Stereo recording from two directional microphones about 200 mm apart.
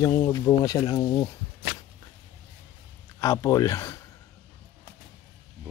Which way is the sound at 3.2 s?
20° left (ahead or behind).